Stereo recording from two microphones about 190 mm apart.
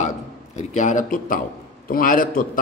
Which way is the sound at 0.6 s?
40° left (ahead or behind).